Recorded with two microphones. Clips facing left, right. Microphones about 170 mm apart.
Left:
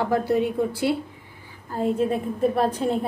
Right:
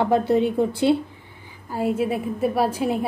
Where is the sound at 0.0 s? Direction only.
25° right (ahead or behind).